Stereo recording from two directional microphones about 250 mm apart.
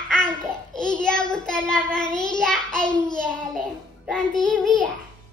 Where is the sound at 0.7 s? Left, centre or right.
Centre.